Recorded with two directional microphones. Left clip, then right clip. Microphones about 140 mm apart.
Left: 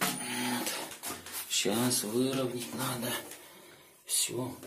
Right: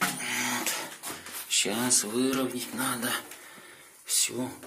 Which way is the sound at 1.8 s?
35° left (ahead or behind).